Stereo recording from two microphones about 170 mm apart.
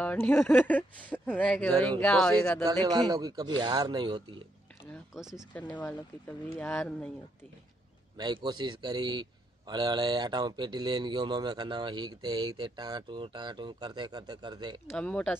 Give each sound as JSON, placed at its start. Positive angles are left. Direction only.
{"t": 0.0, "sound": "speech", "side_deg": 10}
{"t": 2.6, "sound": "a man's voice", "side_deg": -25}
{"t": 4.9, "sound": "speech", "side_deg": 0}
{"t": 5.5, "sound": "speech", "side_deg": 10}
{"t": 8.2, "sound": "a man's voice", "side_deg": -25}
{"t": 14.9, "sound": "speech", "side_deg": 5}